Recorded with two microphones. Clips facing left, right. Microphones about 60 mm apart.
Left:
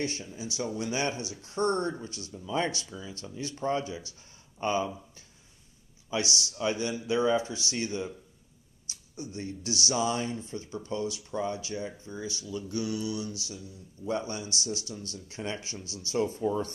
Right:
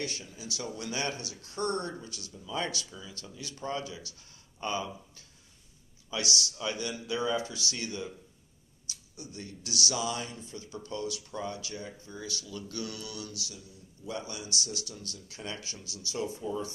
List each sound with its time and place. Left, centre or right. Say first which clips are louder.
0.0 s speech: left 4 dB; left
6.0 s speech: left 2 dB; left